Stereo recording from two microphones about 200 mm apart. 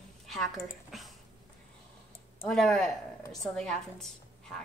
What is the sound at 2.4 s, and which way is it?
A woman's voice, 5° left (ahead or behind).